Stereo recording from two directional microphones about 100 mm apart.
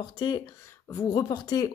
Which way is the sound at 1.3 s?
45° left (ahead or behind).